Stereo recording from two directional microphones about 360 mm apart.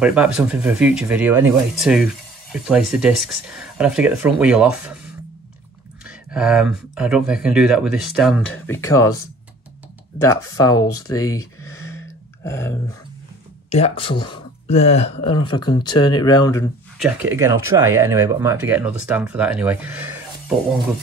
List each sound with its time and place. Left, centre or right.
0.0 s speech: centre
10.2 s speech: centre
10.9 s speech: left
11.1 s a sound: centre
12.4 s speech: centre
17.0 s speech: centre